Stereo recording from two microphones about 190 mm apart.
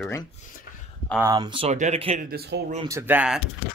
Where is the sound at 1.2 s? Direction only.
20° right (ahead or behind).